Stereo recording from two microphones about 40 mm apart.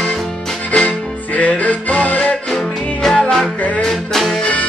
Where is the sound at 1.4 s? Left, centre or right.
Left.